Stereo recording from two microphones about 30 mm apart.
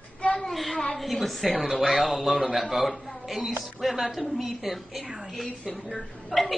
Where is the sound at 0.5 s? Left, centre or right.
Centre.